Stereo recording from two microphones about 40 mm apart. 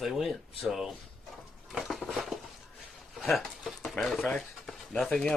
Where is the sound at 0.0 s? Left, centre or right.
Centre.